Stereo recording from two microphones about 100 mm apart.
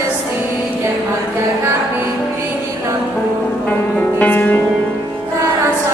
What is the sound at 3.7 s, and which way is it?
Music, 15° left (ahead or behind).